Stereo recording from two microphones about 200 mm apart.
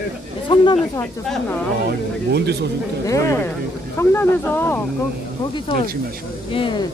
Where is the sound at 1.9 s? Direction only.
55° right (ahead or behind).